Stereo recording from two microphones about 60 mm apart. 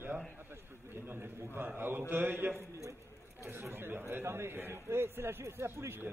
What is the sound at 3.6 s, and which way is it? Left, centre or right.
A man's voice, right.